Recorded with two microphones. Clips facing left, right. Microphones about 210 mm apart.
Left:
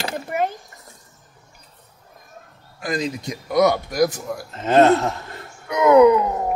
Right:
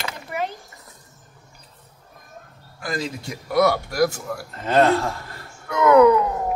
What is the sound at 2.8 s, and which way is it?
Speech, 20° left (ahead or behind).